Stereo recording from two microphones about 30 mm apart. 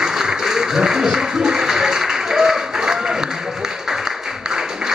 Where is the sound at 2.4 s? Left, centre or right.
Centre.